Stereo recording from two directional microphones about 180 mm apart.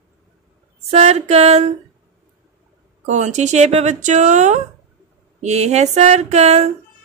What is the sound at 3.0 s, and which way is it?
A woman's voice, 40° right (ahead or behind).